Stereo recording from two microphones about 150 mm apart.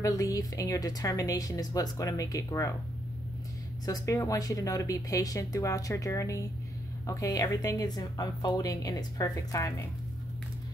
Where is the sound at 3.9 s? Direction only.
25° left (ahead or behind).